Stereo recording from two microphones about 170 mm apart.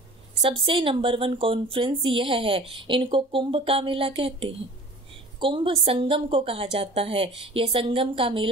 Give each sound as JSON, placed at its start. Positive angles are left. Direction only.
{"t": 0.4, "sound": "speech", "side_deg": -30}
{"t": 5.4, "sound": "speech", "side_deg": -30}